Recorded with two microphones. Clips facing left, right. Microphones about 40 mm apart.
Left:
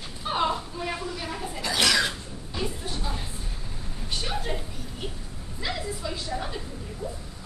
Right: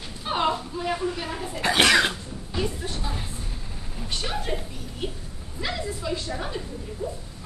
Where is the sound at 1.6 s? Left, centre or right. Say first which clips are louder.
Right 5 dB; right.